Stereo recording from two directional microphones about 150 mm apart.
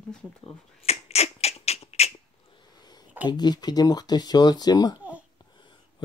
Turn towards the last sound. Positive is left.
turn(degrees=30)  # may be behind; listen again after turning